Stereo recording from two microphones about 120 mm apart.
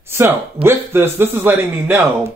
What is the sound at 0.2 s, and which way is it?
Speech, 20° right (ahead or behind).